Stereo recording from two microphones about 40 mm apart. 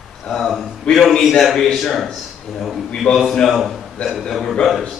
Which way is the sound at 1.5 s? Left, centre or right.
Centre.